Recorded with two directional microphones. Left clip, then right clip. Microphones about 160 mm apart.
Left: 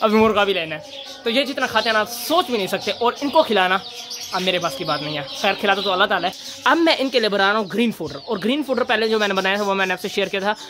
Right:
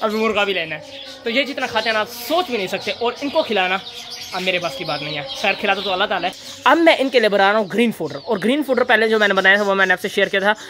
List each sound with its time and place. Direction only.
0.3 s a man's voice: 15° left (ahead or behind)
6.6 s speech: centre (ahead or behind)